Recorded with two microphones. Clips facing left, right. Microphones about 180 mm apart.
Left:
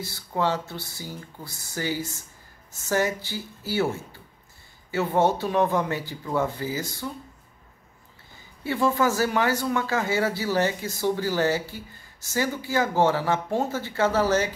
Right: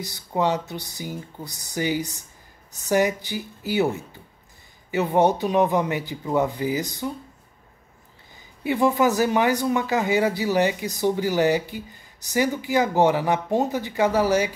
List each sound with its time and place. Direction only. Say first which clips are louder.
0.0 s speech: right 3 dB; 20° right (ahead or behind)
8.6 s speech: right 3 dB; 15° right (ahead or behind)